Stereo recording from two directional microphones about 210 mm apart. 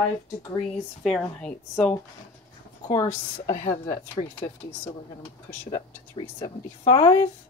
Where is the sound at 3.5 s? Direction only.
30° left (ahead or behind).